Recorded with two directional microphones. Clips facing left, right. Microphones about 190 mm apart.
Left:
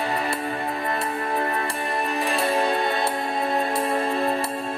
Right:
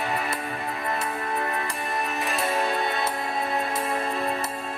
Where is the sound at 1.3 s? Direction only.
35° left (ahead or behind).